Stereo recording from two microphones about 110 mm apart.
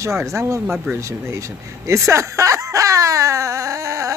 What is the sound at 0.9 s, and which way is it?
Speech, 25° right (ahead or behind).